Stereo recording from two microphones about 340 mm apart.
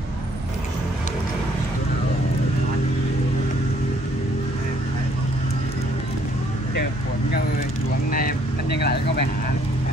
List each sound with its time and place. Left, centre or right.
8.1 s speech: left